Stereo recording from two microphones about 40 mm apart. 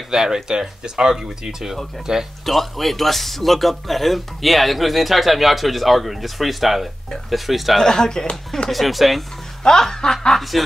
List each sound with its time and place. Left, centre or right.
0.1 s speech: centre
2.4 s a man's voice: centre
7.7 s speech: centre
8.6 s a man's voice: centre
9.6 s speech: centre
10.5 s a man's voice: centre